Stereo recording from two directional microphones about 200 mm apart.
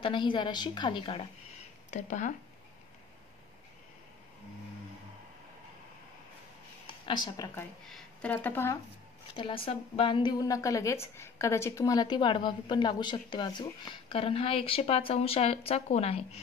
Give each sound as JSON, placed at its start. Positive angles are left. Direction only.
{"t": 0.0, "sound": "a woman's voice", "side_deg": 25}
{"t": 1.9, "sound": "speech", "side_deg": 35}
{"t": 7.1, "sound": "a woman's voice", "side_deg": 20}
{"t": 7.9, "sound": "speech", "side_deg": 5}
{"t": 9.3, "sound": "a woman's voice", "side_deg": 25}